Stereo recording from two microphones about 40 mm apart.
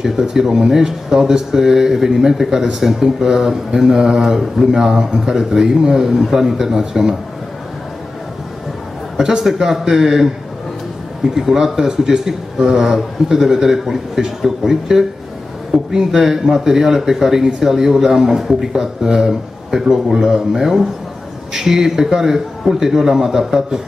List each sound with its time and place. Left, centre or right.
0.0 s speech: centre
9.1 s speech: centre
11.3 s speech: centre